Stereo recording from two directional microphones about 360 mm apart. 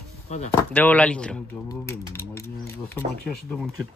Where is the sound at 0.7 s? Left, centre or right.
Centre.